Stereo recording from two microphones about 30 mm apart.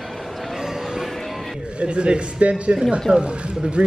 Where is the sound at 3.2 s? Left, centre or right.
Right.